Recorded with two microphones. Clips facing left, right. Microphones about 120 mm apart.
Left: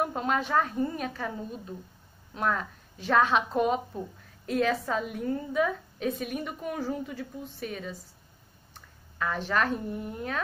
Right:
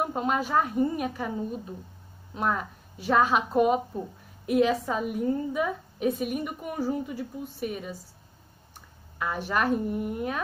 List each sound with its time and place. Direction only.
0.0 s a woman's voice: 10° right (ahead or behind)
9.2 s a woman's voice: 15° right (ahead or behind)